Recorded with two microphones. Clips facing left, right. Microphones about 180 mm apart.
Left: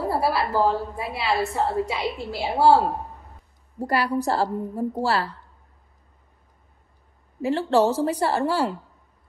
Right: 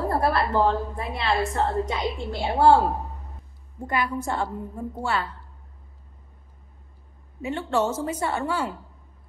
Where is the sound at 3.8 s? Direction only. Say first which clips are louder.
Left 4 dB; 35° left (ahead or behind).